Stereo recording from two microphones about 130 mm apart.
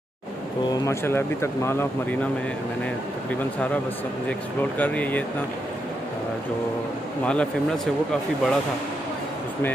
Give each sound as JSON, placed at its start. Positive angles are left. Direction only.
{"t": 0.8, "sound": "speech", "side_deg": 20}
{"t": 4.3, "sound": "speech", "side_deg": 10}
{"t": 7.2, "sound": "speech", "side_deg": 5}